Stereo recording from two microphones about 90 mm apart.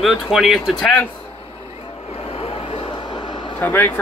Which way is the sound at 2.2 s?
90° left.